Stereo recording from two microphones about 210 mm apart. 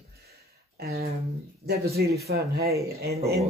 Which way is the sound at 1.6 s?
50° right (ahead or behind).